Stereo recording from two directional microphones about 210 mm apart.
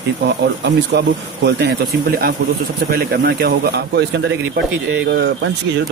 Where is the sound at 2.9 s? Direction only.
50° right (ahead or behind).